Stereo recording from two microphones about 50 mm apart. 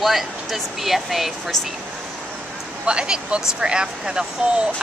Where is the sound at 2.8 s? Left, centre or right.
Centre.